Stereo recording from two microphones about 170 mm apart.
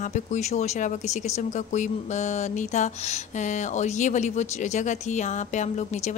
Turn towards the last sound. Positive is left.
turn(degrees=45)  # may be behind; listen again after turning